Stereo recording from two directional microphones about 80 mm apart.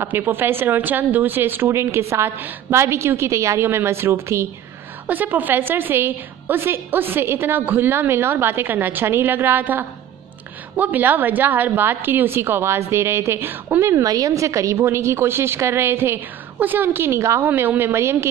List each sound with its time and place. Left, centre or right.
0.0 s speech: right
5.0 s a woman's voice: right
13.8 s speech: right
17.5 s a woman's voice: right